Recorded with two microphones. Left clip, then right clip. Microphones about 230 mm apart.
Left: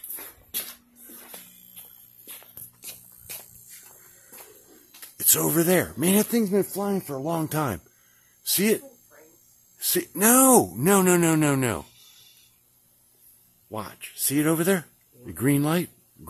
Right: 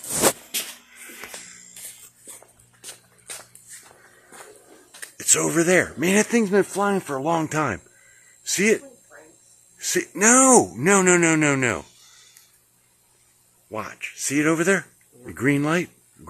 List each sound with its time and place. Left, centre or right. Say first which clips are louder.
2.8 s music: right 3 dB; centre
5.2 s speech: right 3 dB; left
6.2 s speech: right 4 dB; centre
7.0 s speech: right 5 dB; centre
7.2 s speech: right 5 dB; centre
9.9 s speech: right 4 dB; centre
11.1 s speech: right 3 dB; left
13.7 s speech: right 5 dB; centre